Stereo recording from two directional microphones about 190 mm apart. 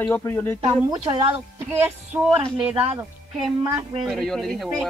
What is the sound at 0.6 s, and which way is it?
Speech, 20° right (ahead or behind).